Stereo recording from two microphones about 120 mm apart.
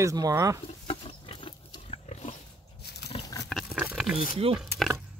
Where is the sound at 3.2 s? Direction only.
30° left (ahead or behind).